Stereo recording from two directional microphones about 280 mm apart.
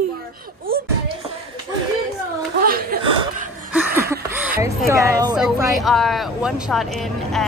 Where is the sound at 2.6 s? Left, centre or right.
Right.